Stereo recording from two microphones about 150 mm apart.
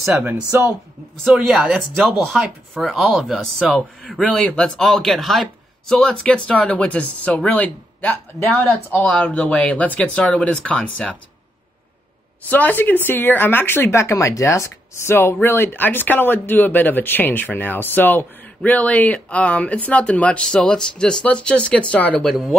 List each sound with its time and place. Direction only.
0.0 s speech: 5° right (ahead or behind)
12.4 s speech: 10° left (ahead or behind)